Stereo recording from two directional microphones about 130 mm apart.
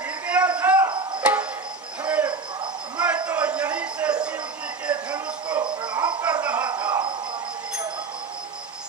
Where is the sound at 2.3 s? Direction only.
35° right (ahead or behind).